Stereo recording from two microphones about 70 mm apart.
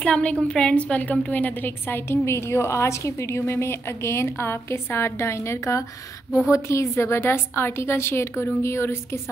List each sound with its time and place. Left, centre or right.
0.0 s a woman's voice: centre; by 9.2 s left